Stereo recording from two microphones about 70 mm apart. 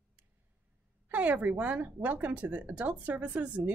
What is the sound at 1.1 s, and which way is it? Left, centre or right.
Speech, right.